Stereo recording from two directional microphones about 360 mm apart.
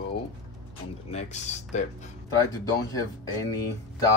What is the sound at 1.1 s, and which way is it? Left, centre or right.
Speech, centre.